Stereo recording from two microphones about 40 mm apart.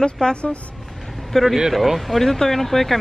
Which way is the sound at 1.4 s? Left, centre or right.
Centre.